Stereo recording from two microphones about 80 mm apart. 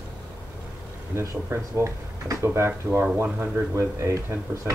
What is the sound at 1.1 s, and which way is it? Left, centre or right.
Speech, right.